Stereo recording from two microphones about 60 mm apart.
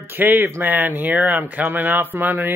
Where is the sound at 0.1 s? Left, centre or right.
Right.